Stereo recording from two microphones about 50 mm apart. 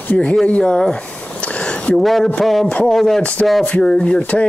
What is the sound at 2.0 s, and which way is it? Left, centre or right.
Speech, centre.